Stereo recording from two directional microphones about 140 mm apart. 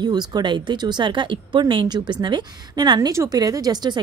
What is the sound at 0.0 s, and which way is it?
Speech, 30° right (ahead or behind).